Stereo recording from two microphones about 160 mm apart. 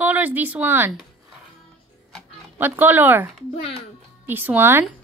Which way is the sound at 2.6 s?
10° right (ahead or behind).